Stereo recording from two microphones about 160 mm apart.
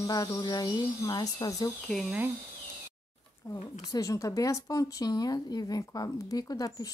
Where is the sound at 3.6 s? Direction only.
45° left (ahead or behind).